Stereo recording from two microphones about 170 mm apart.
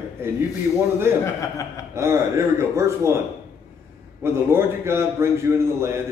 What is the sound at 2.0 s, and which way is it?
Speech, 15° right (ahead or behind).